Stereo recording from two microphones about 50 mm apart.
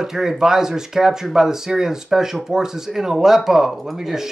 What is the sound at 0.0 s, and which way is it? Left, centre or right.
Speech, centre.